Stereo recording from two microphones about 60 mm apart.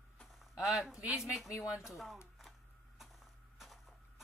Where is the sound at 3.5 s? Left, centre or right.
Centre.